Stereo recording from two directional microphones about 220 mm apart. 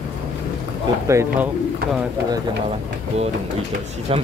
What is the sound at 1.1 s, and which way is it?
Speech, 10° right (ahead or behind).